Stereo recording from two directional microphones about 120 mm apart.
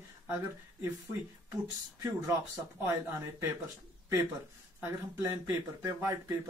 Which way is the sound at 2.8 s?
20° right (ahead or behind).